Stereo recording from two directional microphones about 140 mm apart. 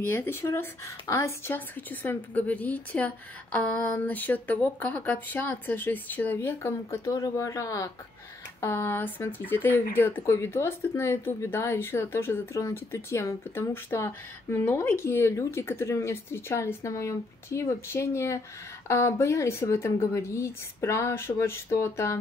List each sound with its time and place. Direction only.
0.1 s a woman's voice: 15° left (ahead or behind)